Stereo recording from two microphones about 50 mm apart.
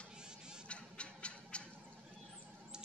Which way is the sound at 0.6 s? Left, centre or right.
Left.